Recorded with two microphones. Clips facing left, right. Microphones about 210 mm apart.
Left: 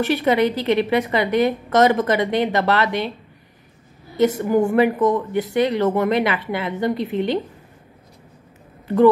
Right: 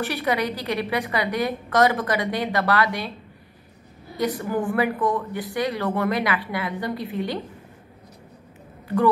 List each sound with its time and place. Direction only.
0.0 s a woman's voice: 25° left (ahead or behind)
4.2 s a woman's voice: 25° left (ahead or behind)
8.8 s speech: 25° left (ahead or behind)